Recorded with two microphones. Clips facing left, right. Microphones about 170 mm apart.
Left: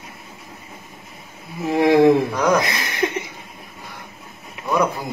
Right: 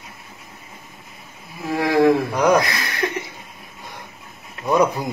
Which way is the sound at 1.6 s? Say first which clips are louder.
Left 3 dB; 20° left (ahead or behind).